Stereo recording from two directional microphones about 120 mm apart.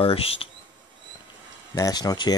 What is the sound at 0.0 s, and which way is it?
Speech, 50° left (ahead or behind).